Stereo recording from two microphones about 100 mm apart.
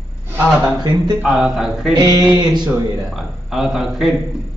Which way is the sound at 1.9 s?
40° right (ahead or behind).